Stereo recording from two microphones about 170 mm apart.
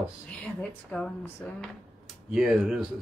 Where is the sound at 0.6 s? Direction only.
5° left (ahead or behind).